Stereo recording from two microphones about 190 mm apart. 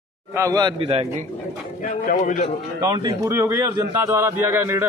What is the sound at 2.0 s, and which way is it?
Speech, 45° left (ahead or behind).